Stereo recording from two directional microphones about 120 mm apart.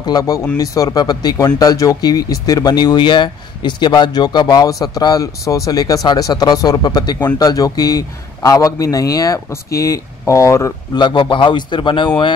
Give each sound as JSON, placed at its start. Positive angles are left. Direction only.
{"t": 0.0, "sound": "speech", "side_deg": 30}
{"t": 11.0, "sound": "speech", "side_deg": 40}